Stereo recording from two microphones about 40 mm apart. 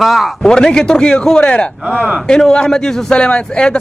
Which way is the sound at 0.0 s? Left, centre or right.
Centre.